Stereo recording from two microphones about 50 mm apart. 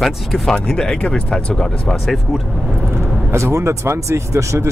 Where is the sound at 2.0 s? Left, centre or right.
Centre.